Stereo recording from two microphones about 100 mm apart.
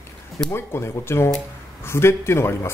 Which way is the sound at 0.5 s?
25° left (ahead or behind).